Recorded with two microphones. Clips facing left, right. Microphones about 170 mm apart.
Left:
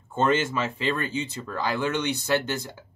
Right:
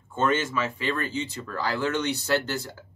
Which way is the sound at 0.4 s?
30° left (ahead or behind).